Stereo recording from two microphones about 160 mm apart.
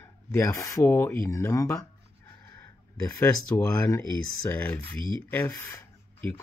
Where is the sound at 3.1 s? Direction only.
20° left (ahead or behind).